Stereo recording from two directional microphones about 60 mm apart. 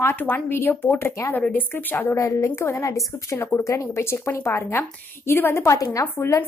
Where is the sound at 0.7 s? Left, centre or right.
Left.